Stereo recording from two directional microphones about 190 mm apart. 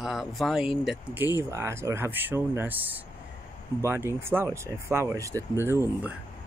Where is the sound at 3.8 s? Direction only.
15° right (ahead or behind).